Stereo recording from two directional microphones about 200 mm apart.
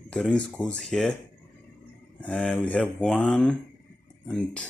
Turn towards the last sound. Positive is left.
turn(degrees=5)  # may be behind; listen again after turning